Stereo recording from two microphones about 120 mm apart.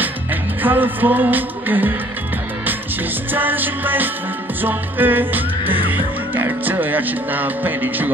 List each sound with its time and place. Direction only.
0.6 s music: 15° right (ahead or behind)
3.3 s music: 15° right (ahead or behind)